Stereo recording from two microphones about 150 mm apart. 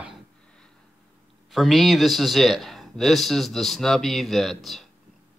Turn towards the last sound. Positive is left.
turn(degrees=0)  # may be behind; listen again after turning